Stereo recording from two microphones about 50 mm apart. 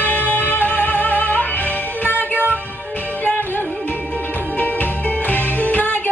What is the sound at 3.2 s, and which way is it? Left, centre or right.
Music, left.